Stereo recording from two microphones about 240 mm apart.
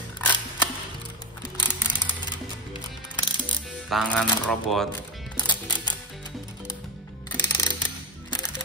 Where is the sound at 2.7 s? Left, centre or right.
Centre.